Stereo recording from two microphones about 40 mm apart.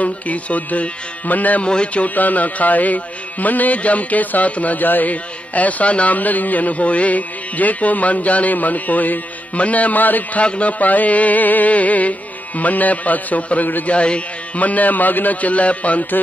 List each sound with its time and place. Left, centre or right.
0.0 s music: left
1.6 s a man's voice: left
2.0 s music: left
10.4 s music: left
13.8 s a man's voice: left
14.6 s music: left